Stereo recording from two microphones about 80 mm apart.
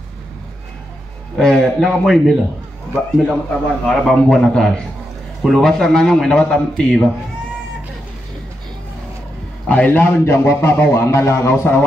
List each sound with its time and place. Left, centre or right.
1.4 s a man's voice: centre
9.7 s a man's voice: left